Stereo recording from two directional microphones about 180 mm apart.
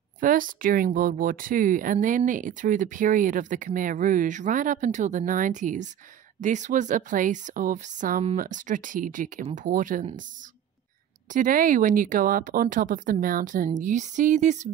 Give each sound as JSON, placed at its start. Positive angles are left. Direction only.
{"t": 0.2, "sound": "speech", "side_deg": -50}
{"t": 11.3, "sound": "speech", "side_deg": -50}